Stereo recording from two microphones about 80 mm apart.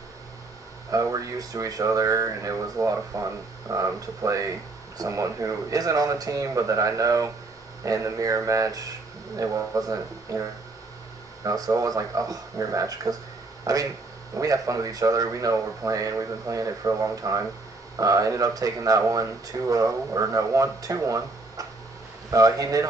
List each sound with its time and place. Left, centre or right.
0.9 s speech: right
11.4 s speech: right